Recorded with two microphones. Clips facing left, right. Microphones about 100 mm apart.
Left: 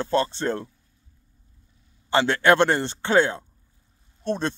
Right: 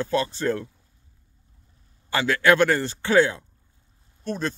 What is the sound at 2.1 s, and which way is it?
Speech, 25° left (ahead or behind).